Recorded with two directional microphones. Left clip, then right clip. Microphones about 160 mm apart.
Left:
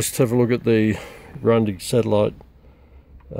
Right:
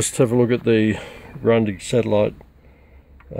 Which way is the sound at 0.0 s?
5° right (ahead or behind).